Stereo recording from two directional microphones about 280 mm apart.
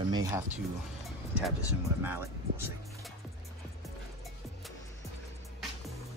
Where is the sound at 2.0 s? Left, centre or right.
Centre.